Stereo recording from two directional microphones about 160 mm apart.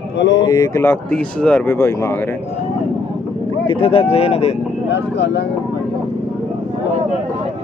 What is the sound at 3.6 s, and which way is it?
Speech, 35° left (ahead or behind).